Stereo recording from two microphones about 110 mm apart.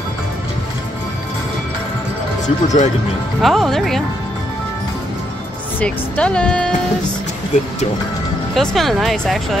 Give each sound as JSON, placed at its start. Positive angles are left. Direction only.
{"t": 2.4, "sound": "speech", "side_deg": 90}
{"t": 3.4, "sound": "speech", "side_deg": 0}
{"t": 5.8, "sound": "speech", "side_deg": 10}
{"t": 8.5, "sound": "speech", "side_deg": 0}